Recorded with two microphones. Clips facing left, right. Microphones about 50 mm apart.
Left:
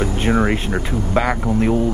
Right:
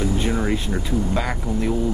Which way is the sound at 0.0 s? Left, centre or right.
Left.